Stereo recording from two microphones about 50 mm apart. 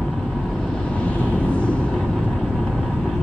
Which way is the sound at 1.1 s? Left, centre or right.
Left.